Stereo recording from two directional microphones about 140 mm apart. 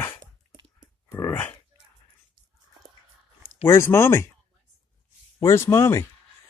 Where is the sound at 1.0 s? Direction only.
20° left (ahead or behind).